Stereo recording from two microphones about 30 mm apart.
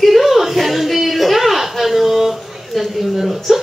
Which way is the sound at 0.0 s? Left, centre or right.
Centre.